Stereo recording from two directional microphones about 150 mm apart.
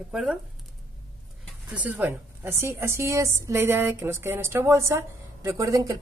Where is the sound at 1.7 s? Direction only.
10° right (ahead or behind).